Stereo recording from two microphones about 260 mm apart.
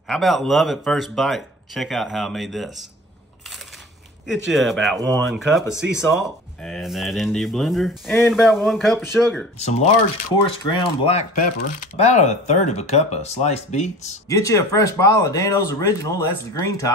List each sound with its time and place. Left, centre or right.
0.1 s speech: centre
4.5 s speech: centre
10.3 s speech: centre
14.3 s speech: centre